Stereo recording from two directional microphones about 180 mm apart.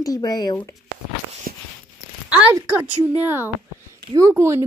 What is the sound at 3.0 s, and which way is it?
A woman's voice, 10° right (ahead or behind).